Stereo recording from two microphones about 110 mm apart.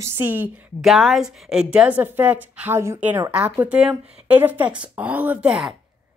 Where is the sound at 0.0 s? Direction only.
20° right (ahead or behind).